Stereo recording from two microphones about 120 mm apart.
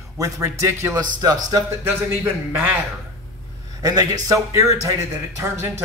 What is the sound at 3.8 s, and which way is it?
A man's voice, 35° right (ahead or behind).